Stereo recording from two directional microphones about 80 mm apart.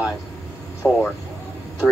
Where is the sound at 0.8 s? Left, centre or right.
Centre.